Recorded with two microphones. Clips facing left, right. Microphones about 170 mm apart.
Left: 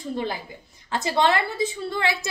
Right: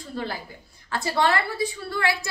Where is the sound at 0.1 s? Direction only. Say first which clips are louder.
Left 3 dB; 20° left (ahead or behind).